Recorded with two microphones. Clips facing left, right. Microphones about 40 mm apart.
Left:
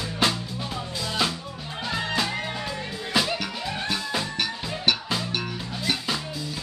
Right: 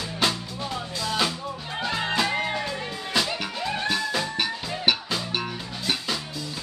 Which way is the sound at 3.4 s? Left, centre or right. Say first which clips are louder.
Right 2 dB; centre.